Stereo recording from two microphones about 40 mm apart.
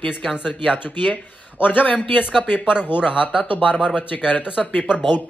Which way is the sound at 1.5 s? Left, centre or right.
Left.